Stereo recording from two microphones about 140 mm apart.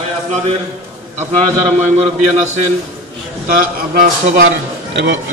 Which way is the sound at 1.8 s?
55° right (ahead or behind).